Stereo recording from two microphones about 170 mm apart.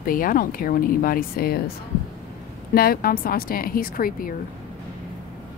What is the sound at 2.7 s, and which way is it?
A woman's voice, 60° left (ahead or behind).